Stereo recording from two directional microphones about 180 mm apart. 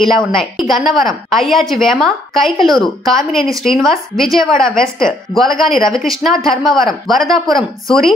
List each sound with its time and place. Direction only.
0.0 s a woman's voice: centre (ahead or behind)